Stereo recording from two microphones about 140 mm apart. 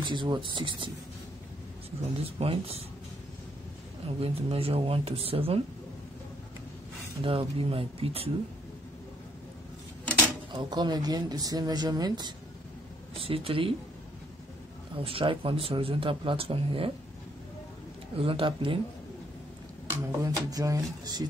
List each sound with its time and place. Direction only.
0.0 s speech: 35° right (ahead or behind)
2.4 s speech: 45° right (ahead or behind)
4.2 s speech: 45° right (ahead or behind)
7.2 s speech: 40° right (ahead or behind)
10.5 s speech: 30° right (ahead or behind)
13.2 s speech: 40° right (ahead or behind)
15.0 s speech: 40° right (ahead or behind)
18.1 s speech: 40° right (ahead or behind)
19.9 s speech: 25° right (ahead or behind)